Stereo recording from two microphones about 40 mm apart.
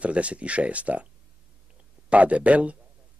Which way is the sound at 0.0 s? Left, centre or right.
Right.